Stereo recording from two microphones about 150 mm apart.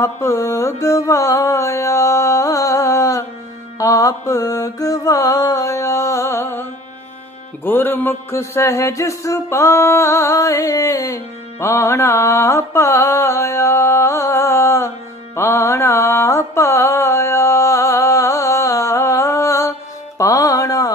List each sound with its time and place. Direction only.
0.0 s mantra: 20° left (ahead or behind)
3.7 s music: 20° left (ahead or behind)
15.3 s mantra: 15° left (ahead or behind)
20.2 s music: 25° left (ahead or behind)